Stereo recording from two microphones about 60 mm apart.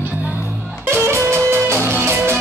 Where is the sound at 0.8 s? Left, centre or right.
Right.